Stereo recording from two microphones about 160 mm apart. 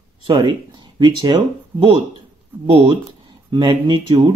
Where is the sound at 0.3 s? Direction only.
30° right (ahead or behind).